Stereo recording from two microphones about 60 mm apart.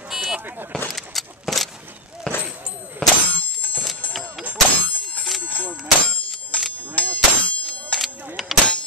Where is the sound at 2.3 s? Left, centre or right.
Centre.